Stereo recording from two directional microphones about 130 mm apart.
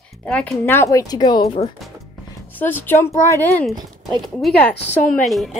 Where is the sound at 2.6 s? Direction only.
15° left (ahead or behind).